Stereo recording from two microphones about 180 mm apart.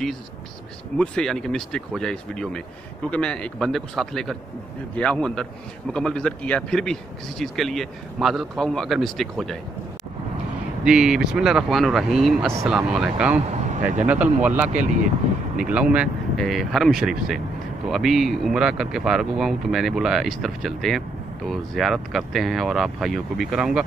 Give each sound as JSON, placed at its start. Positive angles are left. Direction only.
{"t": 0.9, "sound": "speech", "side_deg": 5}
{"t": 10.8, "sound": "speech", "side_deg": -5}
{"t": 13.7, "sound": "speech", "side_deg": -45}
{"t": 14.0, "sound": "speech", "side_deg": -10}